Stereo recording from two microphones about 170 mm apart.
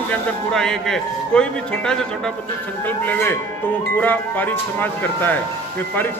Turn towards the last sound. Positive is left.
turn(degrees=10)  # may be behind; listen again after turning